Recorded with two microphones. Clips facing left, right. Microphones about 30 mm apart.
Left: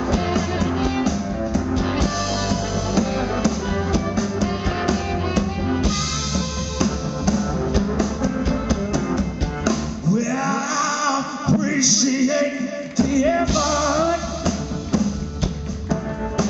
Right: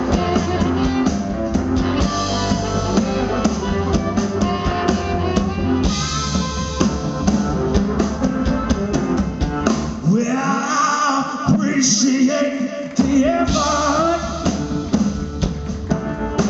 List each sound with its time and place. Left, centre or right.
0.1 s music: centre
4.1 s music: right
5.8 s music: centre